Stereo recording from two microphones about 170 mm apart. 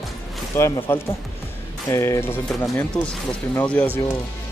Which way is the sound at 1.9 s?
15° left (ahead or behind).